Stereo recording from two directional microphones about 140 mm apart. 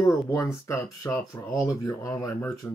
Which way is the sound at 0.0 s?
20° left (ahead or behind).